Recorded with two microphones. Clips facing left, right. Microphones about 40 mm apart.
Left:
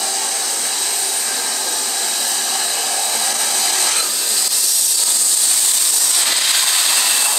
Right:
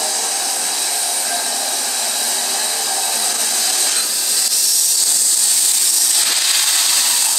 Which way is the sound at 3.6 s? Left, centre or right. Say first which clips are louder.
Left 2 dB; left.